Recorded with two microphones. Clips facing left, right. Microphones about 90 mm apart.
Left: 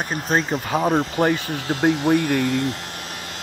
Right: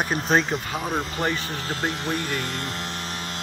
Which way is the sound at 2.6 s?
5° left (ahead or behind).